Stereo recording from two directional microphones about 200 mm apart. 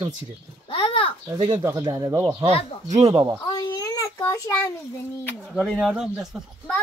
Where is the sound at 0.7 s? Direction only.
25° left (ahead or behind).